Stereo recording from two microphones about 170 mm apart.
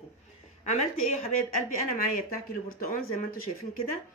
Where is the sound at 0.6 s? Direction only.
40° left (ahead or behind).